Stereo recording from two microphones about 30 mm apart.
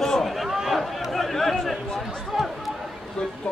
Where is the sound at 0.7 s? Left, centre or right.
Centre.